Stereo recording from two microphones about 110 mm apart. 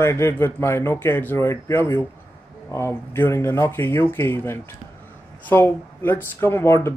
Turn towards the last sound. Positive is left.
turn(degrees=25)  # may be behind; listen again after turning